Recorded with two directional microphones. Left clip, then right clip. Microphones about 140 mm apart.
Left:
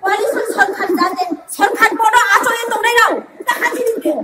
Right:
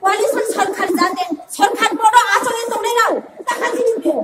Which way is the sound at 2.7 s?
60° left (ahead or behind).